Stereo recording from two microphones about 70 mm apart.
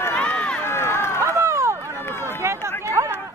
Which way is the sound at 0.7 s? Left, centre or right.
Left.